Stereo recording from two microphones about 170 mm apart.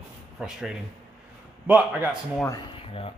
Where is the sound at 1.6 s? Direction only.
10° right (ahead or behind).